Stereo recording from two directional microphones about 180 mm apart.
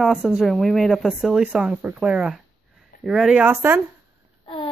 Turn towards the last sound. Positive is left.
turn(degrees=25)  # may be behind; listen again after turning